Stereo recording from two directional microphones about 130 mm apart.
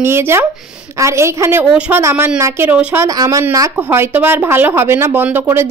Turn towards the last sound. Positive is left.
turn(degrees=-15)  # may be behind; listen again after turning